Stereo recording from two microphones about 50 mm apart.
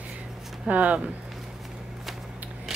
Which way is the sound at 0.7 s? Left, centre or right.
Right.